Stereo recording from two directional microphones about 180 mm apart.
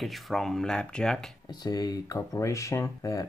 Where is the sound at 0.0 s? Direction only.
Centre (ahead or behind).